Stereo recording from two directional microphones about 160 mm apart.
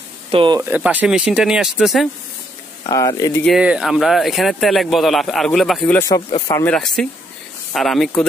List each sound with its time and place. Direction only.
0.3 s speech: 30° right (ahead or behind)
0.6 s speech: 10° right (ahead or behind)
2.9 s speech: 20° left (ahead or behind)
3.4 s speech: 5° right (ahead or behind)
5.9 s speech: 20° left (ahead or behind)
6.5 s speech: 10° left (ahead or behind)